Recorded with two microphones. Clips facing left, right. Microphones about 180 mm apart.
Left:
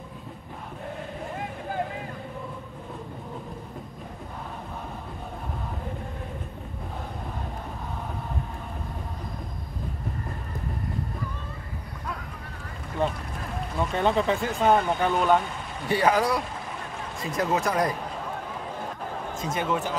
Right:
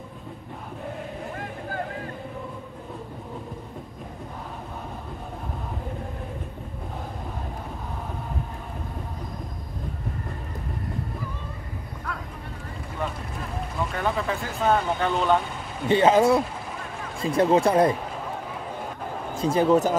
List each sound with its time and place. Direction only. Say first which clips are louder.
13.0 s run: left 4 dB; 25° left (ahead or behind)
13.9 s speech: left 4 dB; 20° left (ahead or behind); by 15.4 s 5° left (ahead or behind)
15.9 s speech: right 5 dB; 25° right (ahead or behind)
19.3 s speech: right 9 dB; 30° right (ahead or behind)